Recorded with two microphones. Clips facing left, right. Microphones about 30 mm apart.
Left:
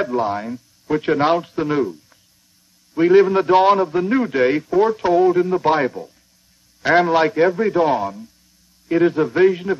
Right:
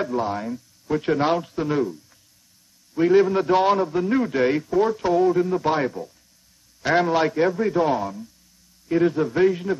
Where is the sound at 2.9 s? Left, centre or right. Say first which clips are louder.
Left 4 dB; left.